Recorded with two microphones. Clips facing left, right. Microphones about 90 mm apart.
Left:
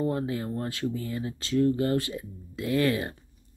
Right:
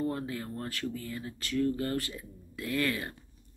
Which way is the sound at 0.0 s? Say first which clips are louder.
Left 5 dB; 20° left (ahead or behind).